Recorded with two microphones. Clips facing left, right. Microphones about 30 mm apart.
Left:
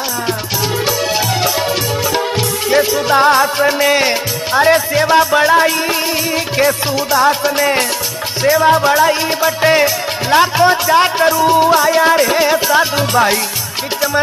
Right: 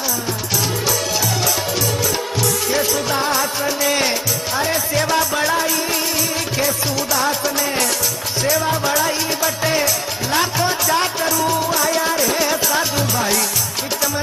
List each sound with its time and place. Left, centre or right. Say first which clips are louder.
2.7 s music: left 10 dB; left
3.2 s music: left 9 dB; left
4.9 s music: left 7 dB; left
7.1 s music: left 9 dB; left
7.5 s music: left 6 dB; left